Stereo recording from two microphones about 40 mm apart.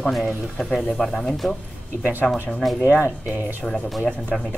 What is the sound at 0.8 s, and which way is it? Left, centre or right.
Speech, centre.